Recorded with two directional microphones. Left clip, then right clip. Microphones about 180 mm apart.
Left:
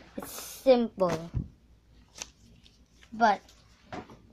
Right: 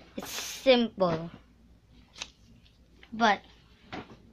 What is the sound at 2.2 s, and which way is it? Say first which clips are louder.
Scissors: right 2 dB; 70° left (ahead or behind).